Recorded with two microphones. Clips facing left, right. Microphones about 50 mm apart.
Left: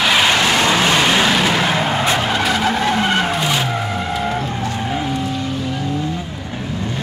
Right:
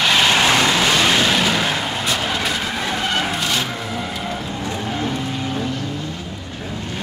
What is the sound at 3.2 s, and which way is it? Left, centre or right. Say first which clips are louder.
Skidding: left 3 dB; centre.